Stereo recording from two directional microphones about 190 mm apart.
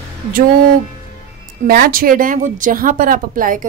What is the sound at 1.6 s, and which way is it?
A woman's voice, 50° right (ahead or behind).